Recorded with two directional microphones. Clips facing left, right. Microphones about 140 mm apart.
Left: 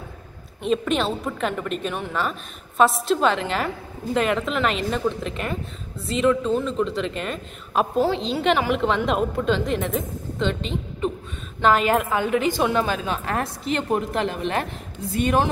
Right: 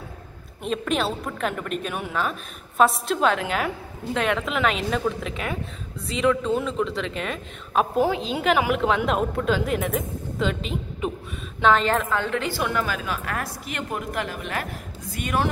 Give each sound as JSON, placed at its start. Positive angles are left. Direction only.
{"t": 0.6, "sound": "a woman's voice", "side_deg": 0}
{"t": 11.6, "sound": "a woman's voice", "side_deg": 10}